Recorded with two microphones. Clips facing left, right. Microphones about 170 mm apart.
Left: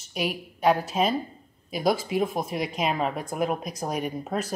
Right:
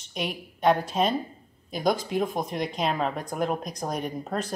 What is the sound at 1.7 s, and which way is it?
A woman's voice, 5° left (ahead or behind).